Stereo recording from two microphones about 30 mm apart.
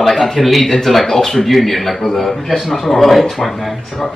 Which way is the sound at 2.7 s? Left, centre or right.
Centre.